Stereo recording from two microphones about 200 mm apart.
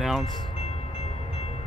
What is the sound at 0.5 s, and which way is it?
Train, 30° left (ahead or behind).